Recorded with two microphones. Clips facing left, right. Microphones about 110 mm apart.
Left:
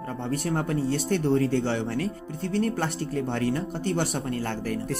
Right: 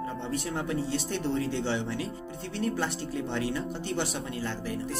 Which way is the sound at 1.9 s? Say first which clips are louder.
Left 4 dB; 55° left (ahead or behind).